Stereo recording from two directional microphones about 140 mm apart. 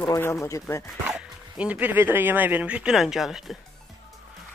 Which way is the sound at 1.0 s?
10° right (ahead or behind).